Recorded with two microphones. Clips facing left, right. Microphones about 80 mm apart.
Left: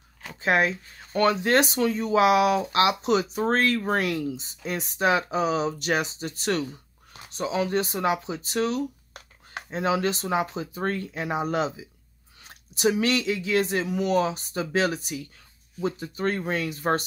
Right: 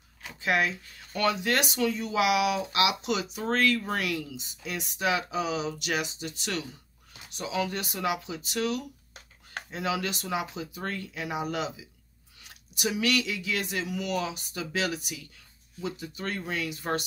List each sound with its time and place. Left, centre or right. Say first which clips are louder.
0.4 s speech: left 4 dB; left